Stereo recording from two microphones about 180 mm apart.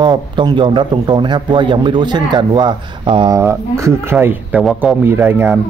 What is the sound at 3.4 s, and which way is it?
Speech, 15° right (ahead or behind).